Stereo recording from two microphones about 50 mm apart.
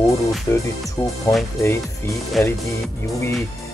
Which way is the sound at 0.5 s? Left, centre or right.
Left.